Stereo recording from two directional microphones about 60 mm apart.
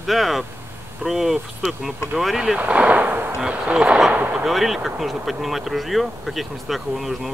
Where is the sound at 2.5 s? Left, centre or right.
Right.